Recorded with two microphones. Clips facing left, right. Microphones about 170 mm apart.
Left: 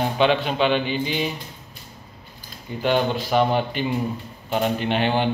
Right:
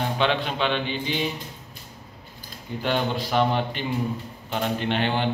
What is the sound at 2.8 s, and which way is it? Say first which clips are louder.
A man's voice: left 4 dB; 5° left (ahead or behind).